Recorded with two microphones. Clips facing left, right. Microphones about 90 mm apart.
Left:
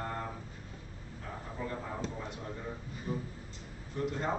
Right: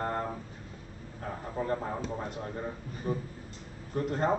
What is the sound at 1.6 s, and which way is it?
Speech, 45° right (ahead or behind).